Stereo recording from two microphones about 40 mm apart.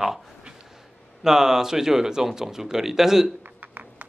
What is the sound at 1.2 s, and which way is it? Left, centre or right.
Speech, centre.